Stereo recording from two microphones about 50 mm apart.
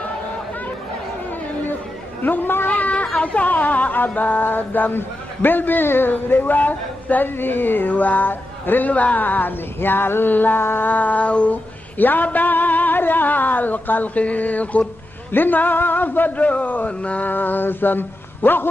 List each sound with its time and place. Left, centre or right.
2.2 s speech: left